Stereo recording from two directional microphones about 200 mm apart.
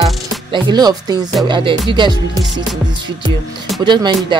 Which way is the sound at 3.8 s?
20° right (ahead or behind).